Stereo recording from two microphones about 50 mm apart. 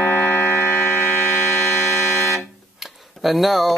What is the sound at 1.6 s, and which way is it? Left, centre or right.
Buzzer, left.